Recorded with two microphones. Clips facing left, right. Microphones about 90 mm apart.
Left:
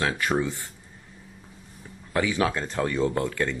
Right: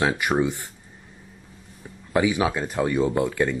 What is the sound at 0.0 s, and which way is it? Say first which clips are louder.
Speech: right 3 dB; 15° right (ahead or behind).